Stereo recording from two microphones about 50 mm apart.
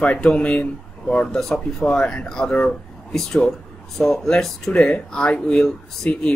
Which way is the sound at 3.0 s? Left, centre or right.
Centre.